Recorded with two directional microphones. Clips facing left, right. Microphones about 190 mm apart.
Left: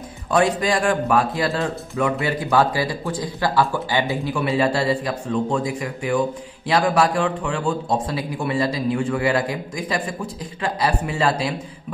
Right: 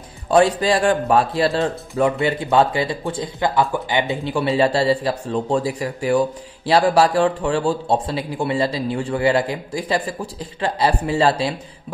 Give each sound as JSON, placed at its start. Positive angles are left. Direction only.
{"t": 0.3, "sound": "speech", "side_deg": -30}